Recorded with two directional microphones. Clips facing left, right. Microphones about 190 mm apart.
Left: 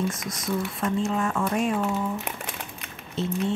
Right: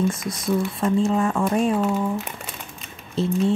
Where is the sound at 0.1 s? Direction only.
30° right (ahead or behind).